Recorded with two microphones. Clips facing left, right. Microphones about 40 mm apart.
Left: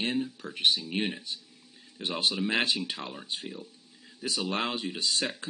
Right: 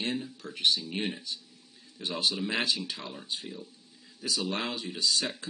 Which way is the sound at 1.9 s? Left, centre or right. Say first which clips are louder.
Left 1 dB; left.